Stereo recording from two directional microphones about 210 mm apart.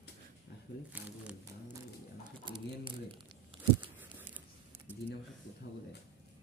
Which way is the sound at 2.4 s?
20° right (ahead or behind).